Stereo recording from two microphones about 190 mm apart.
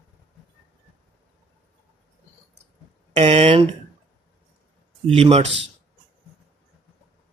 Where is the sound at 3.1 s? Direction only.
35° right (ahead or behind).